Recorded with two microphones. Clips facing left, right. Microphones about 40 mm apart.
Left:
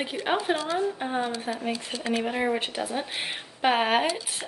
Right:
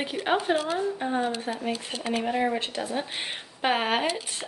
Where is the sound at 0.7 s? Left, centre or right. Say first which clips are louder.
Even; centre.